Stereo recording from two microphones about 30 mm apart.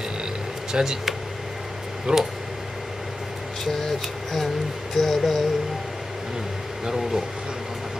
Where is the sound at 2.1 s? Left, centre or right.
Right.